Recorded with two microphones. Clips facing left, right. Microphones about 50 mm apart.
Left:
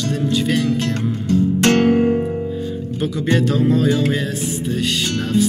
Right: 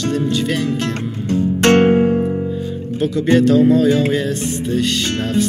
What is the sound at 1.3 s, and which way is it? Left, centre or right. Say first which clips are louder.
Music: right 2 dB; right.